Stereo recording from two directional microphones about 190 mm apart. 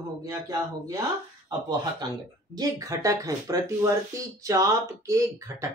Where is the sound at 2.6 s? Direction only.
20° right (ahead or behind).